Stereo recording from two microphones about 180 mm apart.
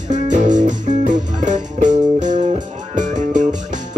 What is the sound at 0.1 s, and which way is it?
Music, 45° right (ahead or behind).